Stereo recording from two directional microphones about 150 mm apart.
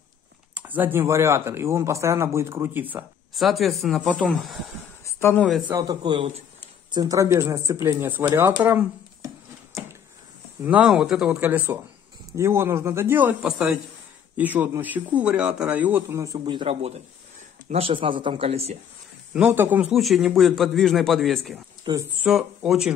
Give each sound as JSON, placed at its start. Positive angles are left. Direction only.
{"t": 0.6, "sound": "speech", "side_deg": -10}
{"t": 3.3, "sound": "a man's voice", "side_deg": 0}
{"t": 5.0, "sound": "a sound", "side_deg": 15}
{"t": 5.7, "sound": "speech", "side_deg": -25}
{"t": 10.6, "sound": "a man's voice", "side_deg": -10}
{"t": 16.4, "sound": "speech", "side_deg": -35}
{"t": 19.3, "sound": "speech", "side_deg": -10}
{"t": 19.9, "sound": "a man's voice", "side_deg": 0}
{"t": 21.8, "sound": "speech", "side_deg": -30}
{"t": 22.2, "sound": "a man's voice", "side_deg": -5}